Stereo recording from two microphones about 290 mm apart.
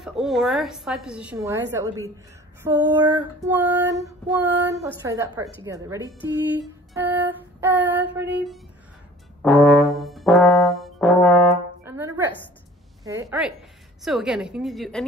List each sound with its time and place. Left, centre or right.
0.0 s a woman's voice: centre
2.6 s female singing: centre
6.9 s a sound: centre
9.4 s brass instrument: centre
11.8 s music: centre
13.0 s female singing: centre
14.0 s a woman's voice: centre